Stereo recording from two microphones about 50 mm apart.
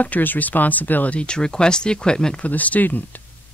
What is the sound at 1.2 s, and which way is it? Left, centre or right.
Speech, centre.